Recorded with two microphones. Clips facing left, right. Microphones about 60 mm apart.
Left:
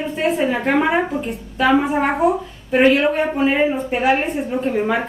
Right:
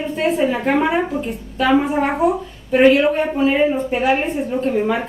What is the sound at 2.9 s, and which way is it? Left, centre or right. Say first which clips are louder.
Speech: right 1 dB; centre.